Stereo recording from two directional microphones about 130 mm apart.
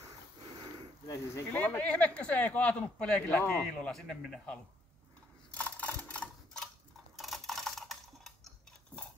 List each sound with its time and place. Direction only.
1.0 s speech: 25° left (ahead or behind)
1.6 s speech: 10° left (ahead or behind)
5.5 s mechanisms: 10° left (ahead or behind)